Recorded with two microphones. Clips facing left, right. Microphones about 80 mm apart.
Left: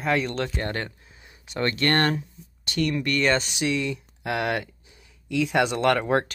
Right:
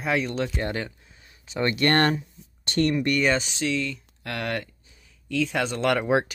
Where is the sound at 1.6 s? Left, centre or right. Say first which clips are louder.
Right 1 dB; right.